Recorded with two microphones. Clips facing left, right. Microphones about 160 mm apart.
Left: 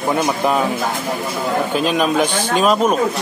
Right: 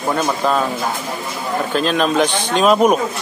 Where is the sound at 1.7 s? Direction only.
10° left (ahead or behind).